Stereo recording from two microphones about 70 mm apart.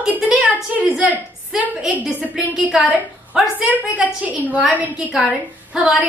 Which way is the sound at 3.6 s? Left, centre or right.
Right.